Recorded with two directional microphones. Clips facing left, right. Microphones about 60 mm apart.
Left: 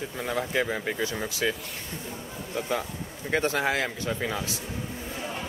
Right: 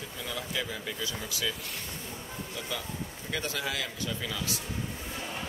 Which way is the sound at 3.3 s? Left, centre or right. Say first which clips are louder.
Left 9 dB; left.